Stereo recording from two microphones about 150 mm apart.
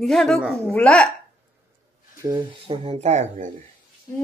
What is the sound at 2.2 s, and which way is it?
Speech, 20° right (ahead or behind).